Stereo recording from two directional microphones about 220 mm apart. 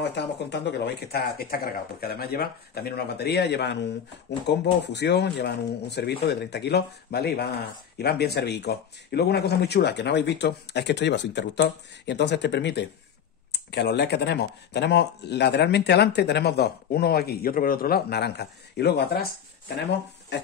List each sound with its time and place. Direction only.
0.0 s speech: 50° left (ahead or behind)